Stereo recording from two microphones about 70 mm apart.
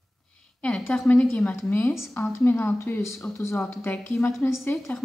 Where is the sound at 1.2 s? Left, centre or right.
Centre.